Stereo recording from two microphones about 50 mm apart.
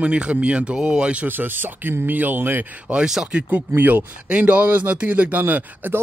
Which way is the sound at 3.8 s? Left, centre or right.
Right.